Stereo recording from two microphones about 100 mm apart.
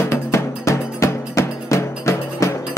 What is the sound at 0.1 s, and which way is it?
Music, 30° left (ahead or behind).